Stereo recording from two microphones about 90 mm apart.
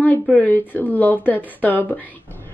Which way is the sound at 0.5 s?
20° left (ahead or behind).